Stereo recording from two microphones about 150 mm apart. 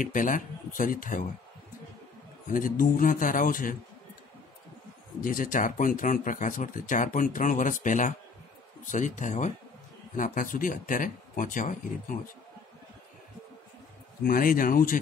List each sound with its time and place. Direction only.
0.0 s speech: 60° left (ahead or behind)
2.5 s speech: 65° left (ahead or behind)
5.2 s speech: 65° left (ahead or behind)
14.2 s speech: 70° left (ahead or behind)